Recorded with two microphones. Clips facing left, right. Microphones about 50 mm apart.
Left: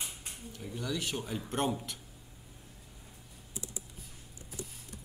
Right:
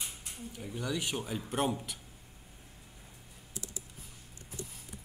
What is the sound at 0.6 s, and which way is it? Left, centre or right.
Speech, centre.